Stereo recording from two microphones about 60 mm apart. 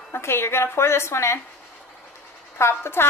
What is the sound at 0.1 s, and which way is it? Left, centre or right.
A woman's voice, left.